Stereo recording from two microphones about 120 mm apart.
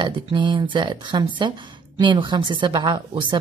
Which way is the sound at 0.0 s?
40° right (ahead or behind).